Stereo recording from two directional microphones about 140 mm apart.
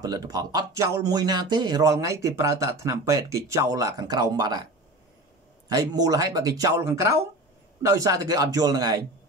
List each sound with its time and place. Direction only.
0.0 s speech: 25° right (ahead or behind)
5.7 s speech: 25° right (ahead or behind)